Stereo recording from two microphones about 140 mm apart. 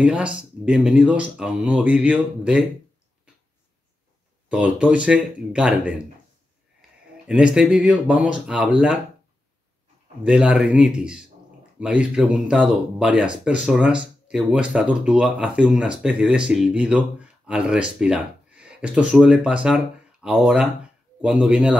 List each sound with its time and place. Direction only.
0.0 s speech: 10° right (ahead or behind)
4.5 s speech: 5° right (ahead or behind)
7.2 s speech: 5° right (ahead or behind)
10.2 s speech: 5° right (ahead or behind)